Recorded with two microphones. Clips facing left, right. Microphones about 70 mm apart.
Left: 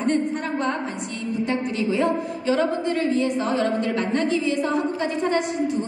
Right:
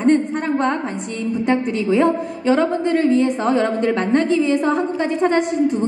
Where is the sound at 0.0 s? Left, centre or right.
Right.